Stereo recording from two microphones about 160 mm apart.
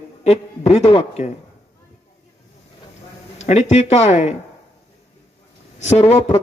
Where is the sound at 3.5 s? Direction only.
45° left (ahead or behind).